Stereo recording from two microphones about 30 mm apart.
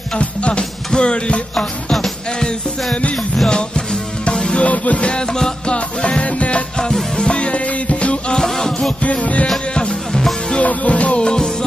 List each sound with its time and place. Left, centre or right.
0.1 s music: left
0.5 s music: left
2.9 s music: left
3.4 s music: left
4.6 s music: left
5.2 s music: left
5.7 s music: left
7.2 s music: left
8.4 s music: centre
9.0 s music: left
10.6 s music: left
11.1 s music: left